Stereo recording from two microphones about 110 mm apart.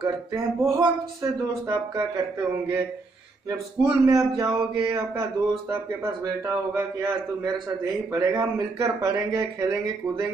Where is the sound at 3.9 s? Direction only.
30° right (ahead or behind).